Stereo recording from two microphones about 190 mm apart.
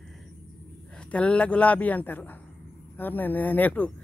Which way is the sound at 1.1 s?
5° left (ahead or behind).